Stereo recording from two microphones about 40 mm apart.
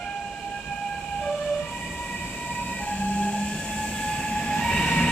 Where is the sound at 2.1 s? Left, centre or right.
Left.